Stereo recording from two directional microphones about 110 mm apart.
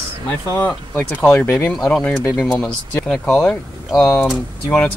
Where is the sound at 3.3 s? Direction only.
20° left (ahead or behind).